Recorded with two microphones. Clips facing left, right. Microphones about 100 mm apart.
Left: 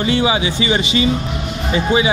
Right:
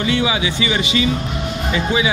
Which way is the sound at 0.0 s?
30° left (ahead or behind).